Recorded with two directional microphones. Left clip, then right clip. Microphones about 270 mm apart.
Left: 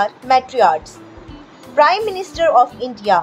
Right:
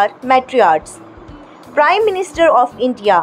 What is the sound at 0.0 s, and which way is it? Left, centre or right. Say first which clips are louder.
A woman's voice: right 2 dB; centre.